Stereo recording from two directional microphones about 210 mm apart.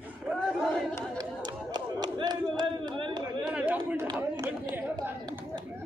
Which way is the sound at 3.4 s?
5° right (ahead or behind).